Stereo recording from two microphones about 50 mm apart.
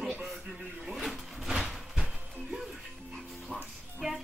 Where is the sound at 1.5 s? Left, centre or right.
Centre.